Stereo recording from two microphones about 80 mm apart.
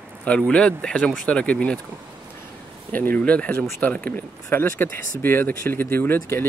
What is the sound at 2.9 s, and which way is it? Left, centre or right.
Speech, left.